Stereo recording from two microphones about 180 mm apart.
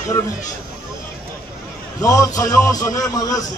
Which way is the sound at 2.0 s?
20° left (ahead or behind).